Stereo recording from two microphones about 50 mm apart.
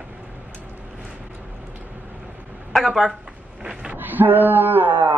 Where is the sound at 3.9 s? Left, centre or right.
Right.